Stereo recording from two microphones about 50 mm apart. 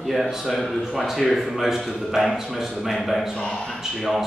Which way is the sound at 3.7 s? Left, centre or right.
Centre.